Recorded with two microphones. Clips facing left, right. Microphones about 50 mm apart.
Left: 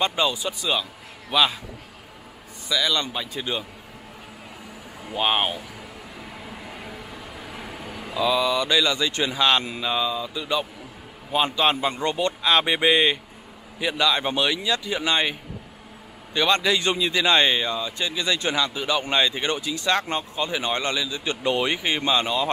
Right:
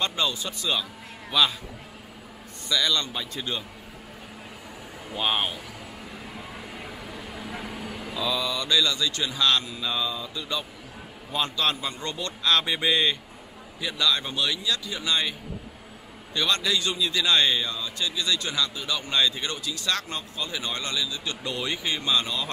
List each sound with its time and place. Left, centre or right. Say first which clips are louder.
0.0 s speech: left 4 dB; centre
2.7 s speech: left 2 dB; centre
5.1 s speech: left 4 dB; centre
8.2 s a man's voice: left 7 dB; centre
16.3 s a man's voice: left 5 dB; left